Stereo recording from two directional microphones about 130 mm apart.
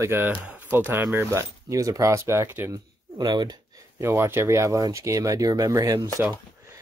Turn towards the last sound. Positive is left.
turn(degrees=-25)  # may be behind; listen again after turning